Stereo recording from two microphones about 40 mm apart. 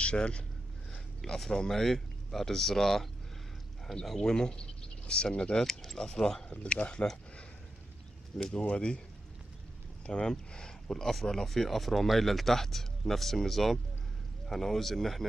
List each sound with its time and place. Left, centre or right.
0.0 s a man's voice: left
1.4 s speech: centre
5.7 s speech: centre
6.5 s speech: left
8.5 s speech: left
10.0 s speech: left; by 15.2 s centre